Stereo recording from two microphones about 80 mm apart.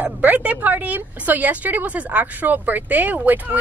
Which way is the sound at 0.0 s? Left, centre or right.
Centre.